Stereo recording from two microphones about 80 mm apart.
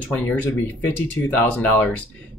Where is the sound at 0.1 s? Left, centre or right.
Left.